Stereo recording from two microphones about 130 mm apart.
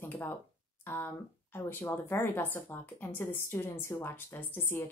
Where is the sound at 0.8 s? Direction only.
15° left (ahead or behind).